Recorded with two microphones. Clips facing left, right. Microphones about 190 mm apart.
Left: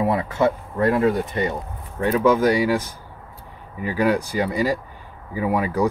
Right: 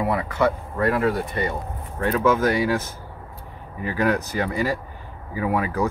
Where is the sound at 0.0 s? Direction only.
25° left (ahead or behind).